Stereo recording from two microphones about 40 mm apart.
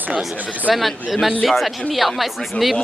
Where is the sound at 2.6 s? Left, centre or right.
Left.